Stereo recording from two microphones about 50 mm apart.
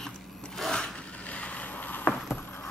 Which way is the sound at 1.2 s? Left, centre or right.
Left.